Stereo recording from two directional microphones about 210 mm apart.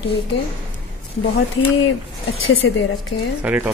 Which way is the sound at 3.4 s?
10° right (ahead or behind).